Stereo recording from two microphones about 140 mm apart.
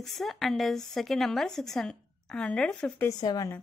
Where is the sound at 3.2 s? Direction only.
30° left (ahead or behind).